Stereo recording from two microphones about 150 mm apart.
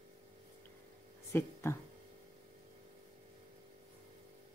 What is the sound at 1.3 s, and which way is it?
Speech, 15° left (ahead or behind).